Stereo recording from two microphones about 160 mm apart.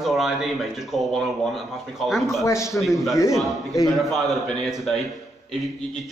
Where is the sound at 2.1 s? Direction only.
Centre (ahead or behind).